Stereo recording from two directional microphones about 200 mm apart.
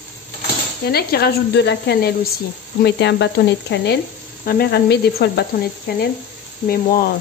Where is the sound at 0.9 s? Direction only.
50° left (ahead or behind).